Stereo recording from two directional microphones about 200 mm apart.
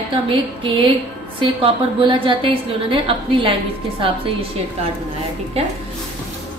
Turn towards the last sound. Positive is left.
turn(degrees=-30)  # may be behind; listen again after turning